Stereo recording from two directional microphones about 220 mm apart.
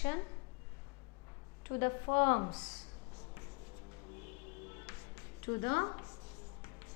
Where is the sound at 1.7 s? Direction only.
15° left (ahead or behind).